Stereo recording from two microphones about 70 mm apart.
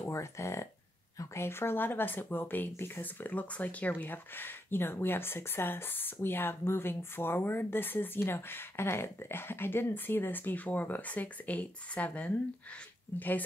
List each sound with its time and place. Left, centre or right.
0.0 s speech: left
1.4 s speech: left; by 12.4 s centre